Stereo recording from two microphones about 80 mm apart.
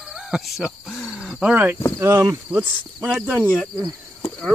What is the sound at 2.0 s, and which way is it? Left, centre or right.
Speech, right.